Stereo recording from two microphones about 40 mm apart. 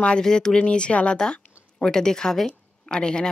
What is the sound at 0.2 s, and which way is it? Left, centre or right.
Speech, centre.